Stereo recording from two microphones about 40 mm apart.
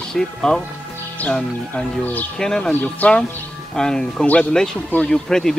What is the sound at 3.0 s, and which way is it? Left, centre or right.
Speech, left.